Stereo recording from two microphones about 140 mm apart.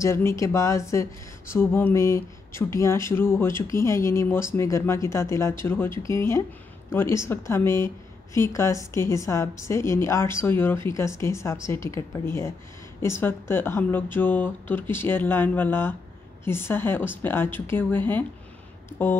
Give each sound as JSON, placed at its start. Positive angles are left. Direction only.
{"t": 0.0, "sound": "a woman's voice", "side_deg": 20}